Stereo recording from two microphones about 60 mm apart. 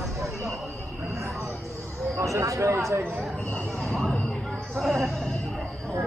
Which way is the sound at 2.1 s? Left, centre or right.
Right.